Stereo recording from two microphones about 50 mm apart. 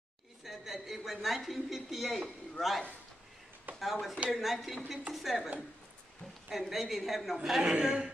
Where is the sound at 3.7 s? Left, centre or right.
Right.